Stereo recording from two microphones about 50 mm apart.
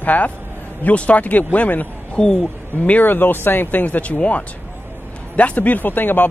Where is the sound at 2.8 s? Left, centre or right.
Left.